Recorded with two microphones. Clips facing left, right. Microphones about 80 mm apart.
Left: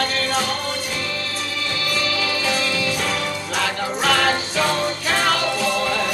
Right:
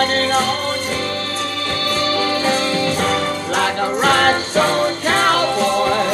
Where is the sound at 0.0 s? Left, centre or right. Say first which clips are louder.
Right 5 dB; right.